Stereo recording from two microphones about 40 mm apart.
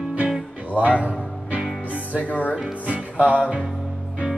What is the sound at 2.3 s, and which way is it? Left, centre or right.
Speech, left.